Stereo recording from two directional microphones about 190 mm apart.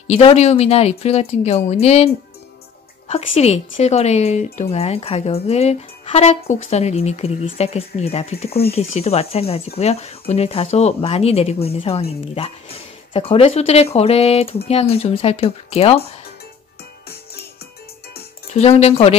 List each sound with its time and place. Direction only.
0.1 s speech: 30° left (ahead or behind)
18.5 s speech: 35° left (ahead or behind)